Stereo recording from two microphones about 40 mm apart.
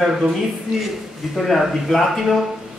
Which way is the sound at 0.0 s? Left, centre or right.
Centre.